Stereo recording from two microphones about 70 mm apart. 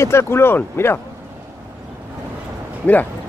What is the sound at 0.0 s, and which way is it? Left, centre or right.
Speech, left.